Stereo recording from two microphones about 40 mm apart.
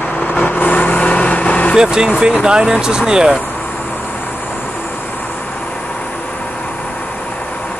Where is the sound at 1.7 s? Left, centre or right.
Centre.